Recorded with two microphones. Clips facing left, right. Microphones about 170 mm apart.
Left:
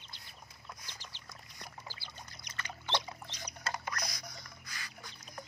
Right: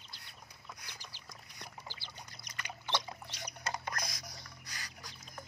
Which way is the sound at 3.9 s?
50° right (ahead or behind).